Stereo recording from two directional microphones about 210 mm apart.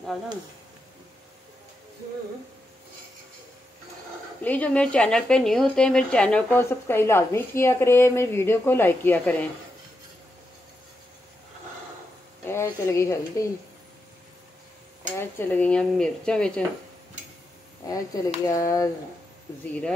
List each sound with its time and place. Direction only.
4.4 s a woman's voice: 5° left (ahead or behind)
12.4 s a woman's voice: 10° left (ahead or behind)
15.1 s speech: 10° left (ahead or behind)
17.8 s a woman's voice: 15° left (ahead or behind)